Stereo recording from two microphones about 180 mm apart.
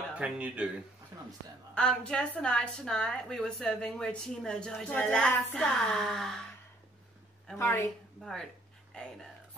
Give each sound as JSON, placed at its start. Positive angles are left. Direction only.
{"t": 0.1, "sound": "speech", "side_deg": -5}
{"t": 1.8, "sound": "a woman's voice", "side_deg": 5}
{"t": 7.5, "sound": "speech", "side_deg": 15}
{"t": 8.2, "sound": "a woman's voice", "side_deg": 0}